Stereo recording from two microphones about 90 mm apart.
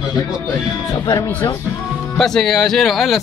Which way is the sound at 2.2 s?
5° left (ahead or behind).